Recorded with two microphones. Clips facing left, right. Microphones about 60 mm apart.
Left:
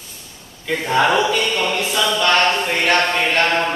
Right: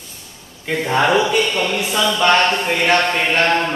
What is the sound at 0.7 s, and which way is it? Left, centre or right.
Speech, centre.